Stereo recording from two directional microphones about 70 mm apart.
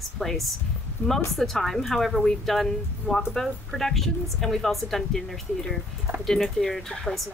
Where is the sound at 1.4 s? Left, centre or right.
Centre.